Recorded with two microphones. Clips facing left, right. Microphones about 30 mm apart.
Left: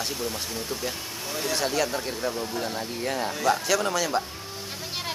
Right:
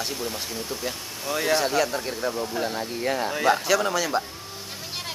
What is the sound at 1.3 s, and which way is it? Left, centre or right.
Speech, right.